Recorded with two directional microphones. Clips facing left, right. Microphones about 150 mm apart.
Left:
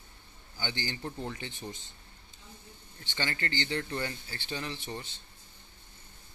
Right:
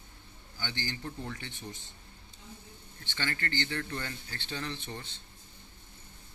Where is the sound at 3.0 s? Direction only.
15° left (ahead or behind).